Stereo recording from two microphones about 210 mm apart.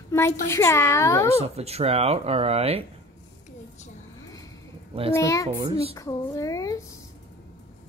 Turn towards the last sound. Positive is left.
turn(degrees=15)  # may be behind; listen again after turning